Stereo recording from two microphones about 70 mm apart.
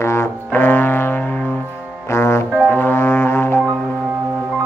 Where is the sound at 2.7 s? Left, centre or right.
Left.